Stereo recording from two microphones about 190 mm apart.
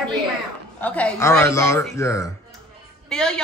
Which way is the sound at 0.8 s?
10° left (ahead or behind).